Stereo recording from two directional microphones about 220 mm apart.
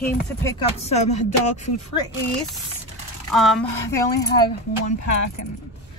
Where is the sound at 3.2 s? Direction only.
Centre (ahead or behind).